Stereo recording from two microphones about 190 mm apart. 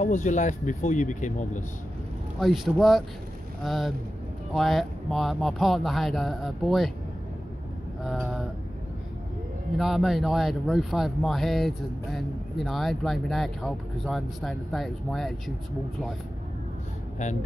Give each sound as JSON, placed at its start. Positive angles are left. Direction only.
{"t": 0.0, "sound": "speech", "side_deg": 40}
{"t": 2.4, "sound": "speech", "side_deg": 0}
{"t": 8.0, "sound": "speech", "side_deg": 0}
{"t": 9.8, "sound": "speech", "side_deg": 0}